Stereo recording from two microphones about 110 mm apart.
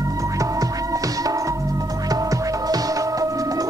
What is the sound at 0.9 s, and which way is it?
Music, 30° right (ahead or behind).